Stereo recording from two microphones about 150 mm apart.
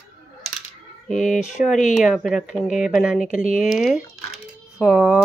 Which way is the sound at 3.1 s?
55° left (ahead or behind).